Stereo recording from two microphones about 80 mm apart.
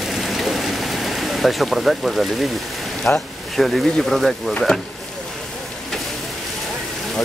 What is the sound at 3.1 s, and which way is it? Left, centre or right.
Speech, centre.